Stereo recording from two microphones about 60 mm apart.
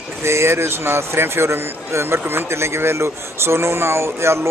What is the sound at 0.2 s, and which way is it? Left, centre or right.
Speech, right.